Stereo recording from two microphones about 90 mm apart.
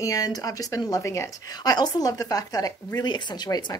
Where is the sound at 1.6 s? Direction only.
45° left (ahead or behind).